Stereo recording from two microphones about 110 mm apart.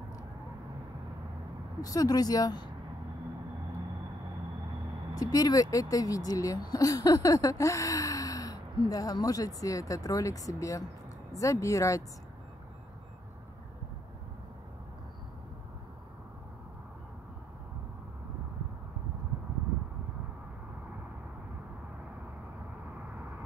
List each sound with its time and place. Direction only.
1.8 s speech: 35° left (ahead or behind)
5.1 s speech: 35° left (ahead or behind)